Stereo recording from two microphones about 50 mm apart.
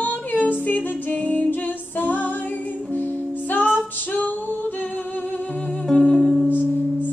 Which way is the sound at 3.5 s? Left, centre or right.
Left.